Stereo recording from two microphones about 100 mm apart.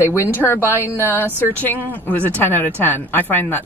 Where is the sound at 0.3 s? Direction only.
20° left (ahead or behind).